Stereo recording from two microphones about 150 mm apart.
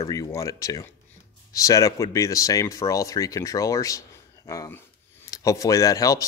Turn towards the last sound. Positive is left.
turn(degrees=20)  # may be behind; listen again after turning